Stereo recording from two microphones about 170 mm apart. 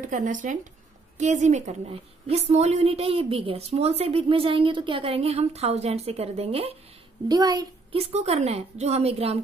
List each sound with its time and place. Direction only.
0.1 s a woman's voice: 50° right (ahead or behind)
7.2 s a child's voice: 20° right (ahead or behind)
7.9 s a woman's voice: 35° right (ahead or behind)